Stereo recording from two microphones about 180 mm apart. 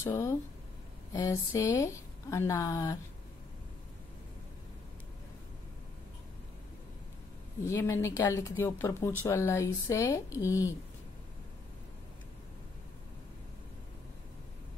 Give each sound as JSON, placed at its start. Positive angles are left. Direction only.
{"t": 0.0, "sound": "a woman's voice", "side_deg": 15}
{"t": 7.6, "sound": "a woman's voice", "side_deg": 15}